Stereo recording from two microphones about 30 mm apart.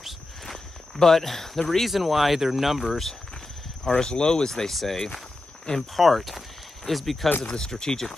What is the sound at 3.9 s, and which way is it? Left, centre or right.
Speech, left.